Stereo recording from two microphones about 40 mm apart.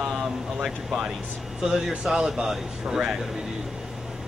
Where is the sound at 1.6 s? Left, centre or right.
Centre.